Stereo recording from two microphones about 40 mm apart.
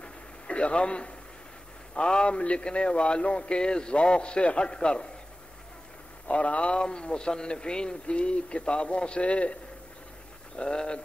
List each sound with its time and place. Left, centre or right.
0.0 s a sound: left
2.0 s speech: left
6.2 s speech: left